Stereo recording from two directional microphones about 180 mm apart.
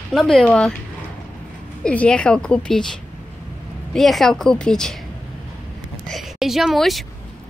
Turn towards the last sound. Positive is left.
turn(degrees=0)  # may be behind; listen again after turning